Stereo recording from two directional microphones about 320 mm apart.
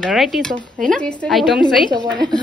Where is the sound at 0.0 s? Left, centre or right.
Centre.